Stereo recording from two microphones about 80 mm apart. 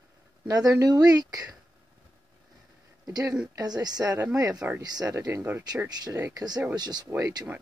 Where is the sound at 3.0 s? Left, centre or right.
Right.